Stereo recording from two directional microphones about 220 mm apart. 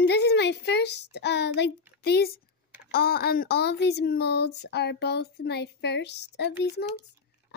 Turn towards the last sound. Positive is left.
turn(degrees=50)  # may be behind; listen again after turning